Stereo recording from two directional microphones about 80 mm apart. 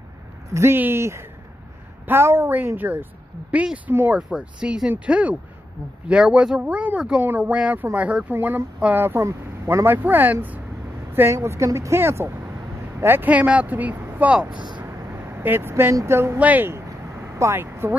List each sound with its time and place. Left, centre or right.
0.5 s speech: right
11.1 s speech: right; by 14.5 s centre
14.5 s speech: right
14.8 s vehicle: right
16.3 s speech: right
17.4 s speech: right